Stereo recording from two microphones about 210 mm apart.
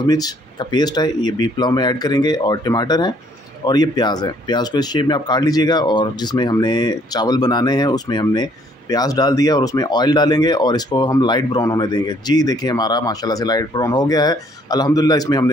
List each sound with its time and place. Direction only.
0.0 s speech: 20° left (ahead or behind)